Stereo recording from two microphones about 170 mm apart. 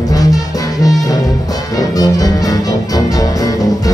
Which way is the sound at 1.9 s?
20° left (ahead or behind).